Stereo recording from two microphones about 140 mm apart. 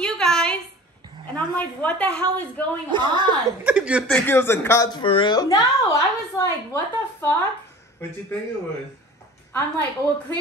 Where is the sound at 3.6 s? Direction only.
10° right (ahead or behind).